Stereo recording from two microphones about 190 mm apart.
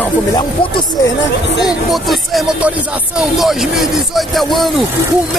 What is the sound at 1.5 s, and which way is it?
Speech, centre (ahead or behind).